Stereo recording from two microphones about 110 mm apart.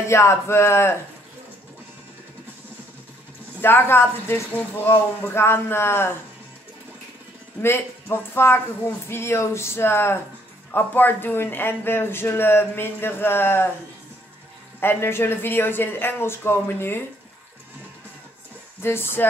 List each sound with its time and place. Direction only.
0.1 s a man's voice: 25° left (ahead or behind)
3.6 s a man's voice: 20° left (ahead or behind)
7.6 s a man's voice: 20° left (ahead or behind)
14.8 s a man's voice: 20° left (ahead or behind)
18.8 s a man's voice: 20° left (ahead or behind)